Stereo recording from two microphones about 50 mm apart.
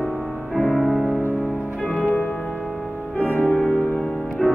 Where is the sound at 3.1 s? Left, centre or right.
Left.